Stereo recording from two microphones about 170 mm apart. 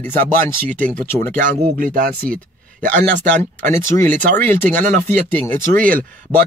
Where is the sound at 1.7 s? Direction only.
55° right (ahead or behind).